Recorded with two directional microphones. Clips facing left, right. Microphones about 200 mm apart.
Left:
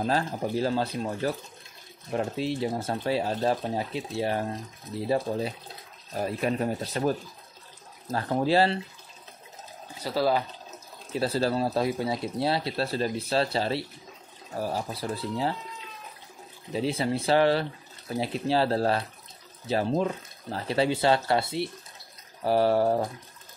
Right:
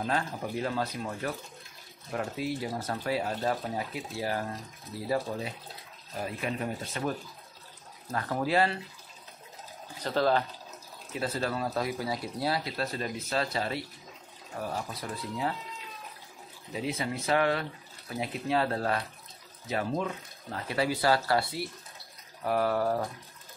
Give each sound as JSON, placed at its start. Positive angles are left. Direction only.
{"t": 0.0, "sound": "speech", "side_deg": 35}
{"t": 6.1, "sound": "speech", "side_deg": 40}
{"t": 10.0, "sound": "speech", "side_deg": 10}
{"t": 11.1, "sound": "speech", "side_deg": 30}
{"t": 16.7, "sound": "speech", "side_deg": 30}